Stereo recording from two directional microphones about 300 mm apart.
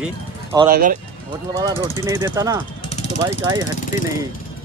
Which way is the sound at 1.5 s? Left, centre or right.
Centre.